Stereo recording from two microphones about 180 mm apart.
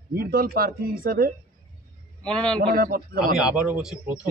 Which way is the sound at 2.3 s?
5° left (ahead or behind).